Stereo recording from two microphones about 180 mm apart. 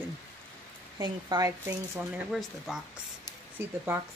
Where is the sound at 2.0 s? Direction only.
Centre (ahead or behind).